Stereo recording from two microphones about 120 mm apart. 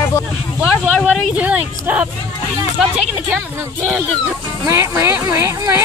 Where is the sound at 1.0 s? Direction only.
10° right (ahead or behind).